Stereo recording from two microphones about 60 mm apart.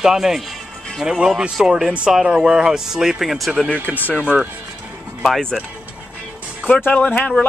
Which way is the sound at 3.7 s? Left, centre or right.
Right.